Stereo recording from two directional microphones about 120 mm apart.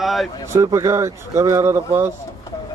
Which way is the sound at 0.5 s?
25° right (ahead or behind).